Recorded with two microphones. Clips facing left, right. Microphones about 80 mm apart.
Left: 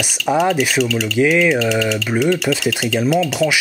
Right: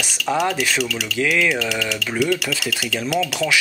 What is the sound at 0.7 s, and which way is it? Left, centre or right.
Speech, left.